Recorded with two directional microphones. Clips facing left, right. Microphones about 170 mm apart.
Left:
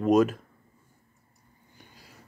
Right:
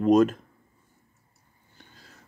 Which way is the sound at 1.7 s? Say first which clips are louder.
Even; 10° left (ahead or behind).